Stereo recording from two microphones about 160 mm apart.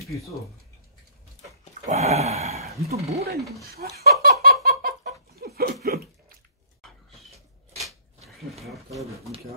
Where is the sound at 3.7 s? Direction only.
75° right (ahead or behind).